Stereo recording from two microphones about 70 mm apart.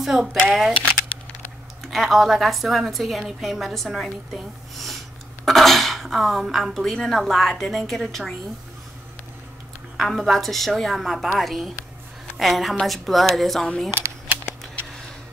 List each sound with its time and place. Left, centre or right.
0.0 s a woman's voice: centre
1.8 s a woman's voice: centre
9.9 s a woman's voice: centre